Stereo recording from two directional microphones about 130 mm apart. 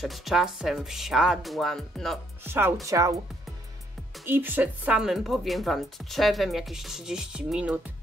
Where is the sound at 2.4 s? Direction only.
20° right (ahead or behind).